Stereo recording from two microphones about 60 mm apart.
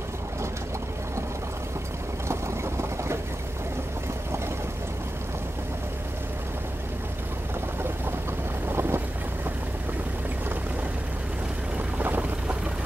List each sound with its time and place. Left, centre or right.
2.2 s vehicle: right
8.6 s boat: right
12.0 s boat: right